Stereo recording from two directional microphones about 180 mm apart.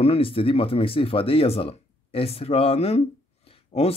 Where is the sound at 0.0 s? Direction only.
30° left (ahead or behind).